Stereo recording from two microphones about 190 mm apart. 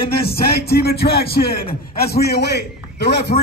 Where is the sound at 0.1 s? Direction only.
55° left (ahead or behind).